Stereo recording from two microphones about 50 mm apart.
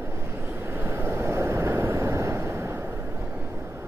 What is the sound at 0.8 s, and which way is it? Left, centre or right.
Waves, right.